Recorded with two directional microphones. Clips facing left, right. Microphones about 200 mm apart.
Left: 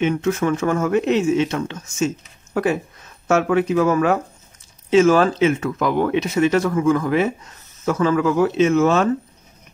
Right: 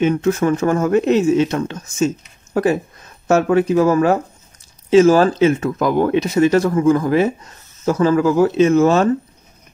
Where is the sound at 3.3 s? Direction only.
40° right (ahead or behind).